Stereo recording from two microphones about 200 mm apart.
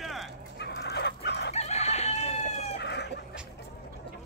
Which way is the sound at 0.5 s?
55° left (ahead or behind).